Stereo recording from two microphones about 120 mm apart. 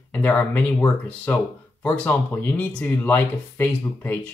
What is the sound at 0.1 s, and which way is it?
Speech, 15° left (ahead or behind).